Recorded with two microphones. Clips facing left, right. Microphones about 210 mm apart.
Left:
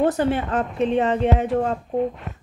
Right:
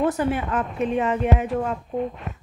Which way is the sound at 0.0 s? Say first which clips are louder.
Left 2 dB; 35° left (ahead or behind).